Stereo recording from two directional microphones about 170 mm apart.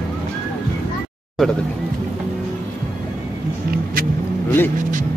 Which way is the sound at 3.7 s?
60° right (ahead or behind).